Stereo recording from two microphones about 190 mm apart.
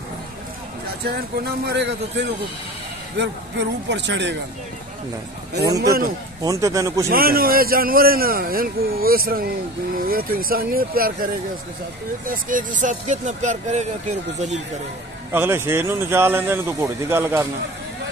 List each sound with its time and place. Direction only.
1.7 s a man's voice: 65° right (ahead or behind)
5.8 s a man's voice: 50° right (ahead or behind)
6.4 s speech: 15° right (ahead or behind)
7.1 s a man's voice: 50° right (ahead or behind)
12.3 s speech: 45° right (ahead or behind)
15.3 s speech: 10° right (ahead or behind)